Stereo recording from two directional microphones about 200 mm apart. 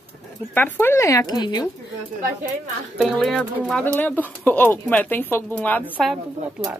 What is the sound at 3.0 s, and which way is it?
Speech, centre (ahead or behind).